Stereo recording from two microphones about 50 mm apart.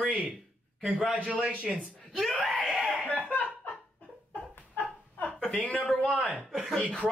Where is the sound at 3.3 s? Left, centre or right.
Left.